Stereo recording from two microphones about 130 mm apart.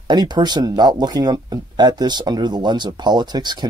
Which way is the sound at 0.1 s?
35° right (ahead or behind).